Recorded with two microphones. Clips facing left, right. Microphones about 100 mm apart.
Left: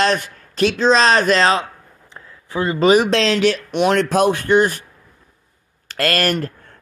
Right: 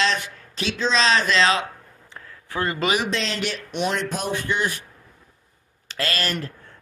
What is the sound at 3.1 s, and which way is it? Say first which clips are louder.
Speech: left 10 dB; 90° left.